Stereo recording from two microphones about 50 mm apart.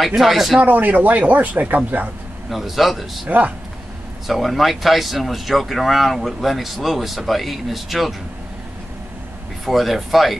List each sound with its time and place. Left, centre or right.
0.0 s speech: centre
0.6 s speech: right
2.5 s speech: centre
3.3 s speech: right
4.3 s speech: centre
9.7 s speech: centre